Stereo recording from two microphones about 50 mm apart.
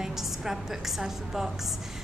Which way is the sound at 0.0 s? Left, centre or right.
Centre.